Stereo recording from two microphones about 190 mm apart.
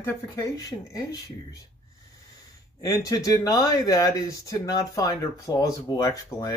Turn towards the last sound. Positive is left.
turn(degrees=15)  # may be behind; listen again after turning